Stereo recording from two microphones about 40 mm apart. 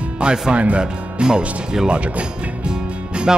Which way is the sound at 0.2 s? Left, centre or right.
Right.